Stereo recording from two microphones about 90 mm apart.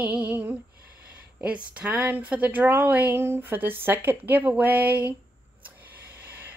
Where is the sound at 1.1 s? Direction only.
15° right (ahead or behind).